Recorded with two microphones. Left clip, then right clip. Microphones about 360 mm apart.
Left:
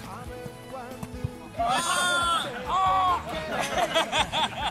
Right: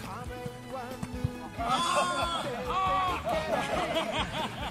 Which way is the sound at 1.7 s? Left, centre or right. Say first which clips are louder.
Left 2 dB; left.